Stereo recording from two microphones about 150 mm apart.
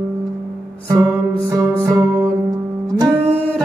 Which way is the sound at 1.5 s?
25° right (ahead or behind).